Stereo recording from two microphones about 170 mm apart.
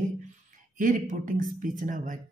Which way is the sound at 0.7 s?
50° right (ahead or behind).